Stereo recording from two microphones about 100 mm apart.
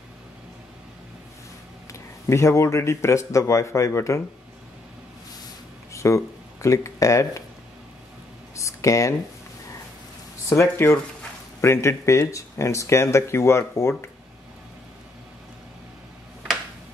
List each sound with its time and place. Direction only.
1.9 s speech: 30° left (ahead or behind)
5.9 s speech: 30° left (ahead or behind)
8.5 s speech: 30° left (ahead or behind)
10.5 s speech: 25° left (ahead or behind)